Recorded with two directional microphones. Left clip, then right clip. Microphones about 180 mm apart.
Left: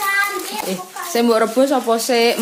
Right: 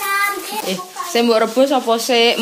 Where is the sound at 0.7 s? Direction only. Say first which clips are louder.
Right 3 dB; 10° left (ahead or behind).